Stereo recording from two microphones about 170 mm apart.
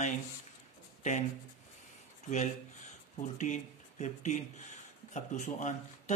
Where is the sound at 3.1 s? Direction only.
45° left (ahead or behind).